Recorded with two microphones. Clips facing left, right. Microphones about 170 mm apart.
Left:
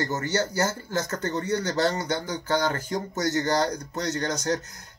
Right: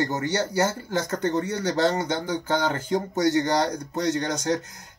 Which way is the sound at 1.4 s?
25° right (ahead or behind).